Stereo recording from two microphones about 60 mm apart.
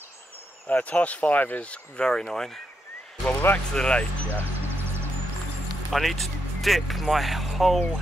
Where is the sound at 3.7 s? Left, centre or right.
Centre.